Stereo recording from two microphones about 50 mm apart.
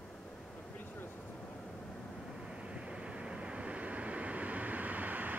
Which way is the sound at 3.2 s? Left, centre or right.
Centre.